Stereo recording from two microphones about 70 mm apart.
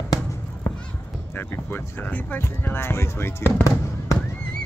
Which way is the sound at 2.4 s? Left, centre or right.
Left.